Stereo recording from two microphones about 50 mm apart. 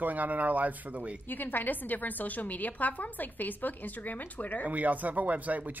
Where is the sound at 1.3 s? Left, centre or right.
Left.